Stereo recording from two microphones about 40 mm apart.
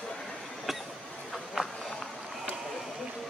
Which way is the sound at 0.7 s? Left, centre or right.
Centre.